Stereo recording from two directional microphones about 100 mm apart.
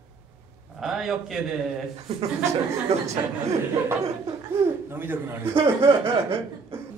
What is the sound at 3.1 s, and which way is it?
Speech, 30° right (ahead or behind).